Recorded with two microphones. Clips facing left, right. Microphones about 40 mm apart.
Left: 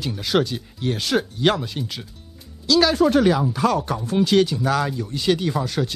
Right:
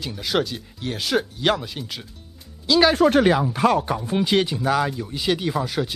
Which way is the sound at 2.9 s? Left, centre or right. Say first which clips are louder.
Even; right.